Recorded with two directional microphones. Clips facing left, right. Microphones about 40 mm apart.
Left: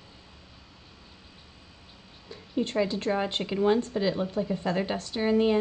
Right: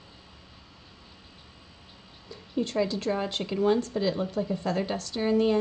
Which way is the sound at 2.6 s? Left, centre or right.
Left.